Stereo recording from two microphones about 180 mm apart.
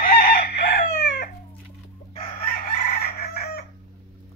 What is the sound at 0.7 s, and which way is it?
Chicken, 70° left (ahead or behind).